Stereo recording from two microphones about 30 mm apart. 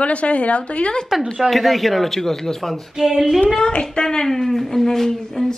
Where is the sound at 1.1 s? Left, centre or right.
Centre.